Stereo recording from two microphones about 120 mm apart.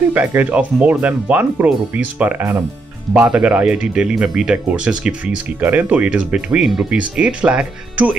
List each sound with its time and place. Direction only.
0.1 s speech: 15° right (ahead or behind)